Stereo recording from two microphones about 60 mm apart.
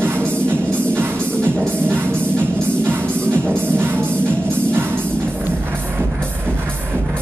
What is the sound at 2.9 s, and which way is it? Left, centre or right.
Music, right.